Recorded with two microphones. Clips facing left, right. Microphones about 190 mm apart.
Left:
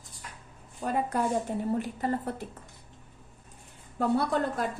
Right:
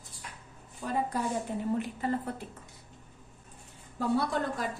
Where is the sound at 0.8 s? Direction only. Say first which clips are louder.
Left 3 dB; 40° left (ahead or behind).